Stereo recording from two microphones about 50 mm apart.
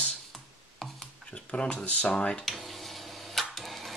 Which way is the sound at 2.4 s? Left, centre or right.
Centre.